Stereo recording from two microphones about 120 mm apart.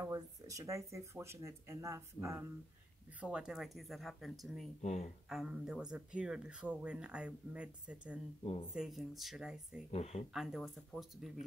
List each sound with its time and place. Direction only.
0.0 s speech: 25° right (ahead or behind)
3.2 s speech: 5° right (ahead or behind)
8.4 s speech: 55° left (ahead or behind)
8.7 s speech: centre (ahead or behind)
9.8 s speech: 60° left (ahead or behind)
10.3 s speech: 5° right (ahead or behind)